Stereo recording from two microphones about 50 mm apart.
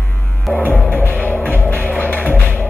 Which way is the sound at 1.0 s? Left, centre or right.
Left.